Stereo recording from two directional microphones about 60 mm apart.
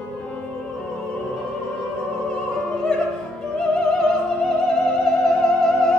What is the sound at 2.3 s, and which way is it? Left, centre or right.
Music, centre.